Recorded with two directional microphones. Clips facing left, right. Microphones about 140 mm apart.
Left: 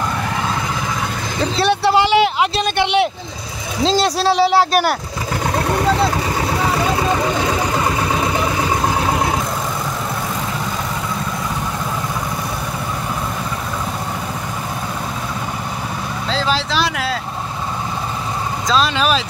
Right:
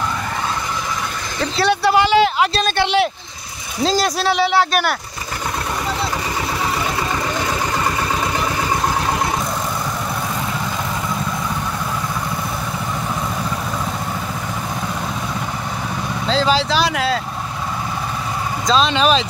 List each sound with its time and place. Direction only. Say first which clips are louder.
1.6 s speech: even; 25° left (ahead or behind)
16.3 s speech: right 3 dB; centre (ahead or behind)
18.7 s speech: right 2 dB; 5° left (ahead or behind)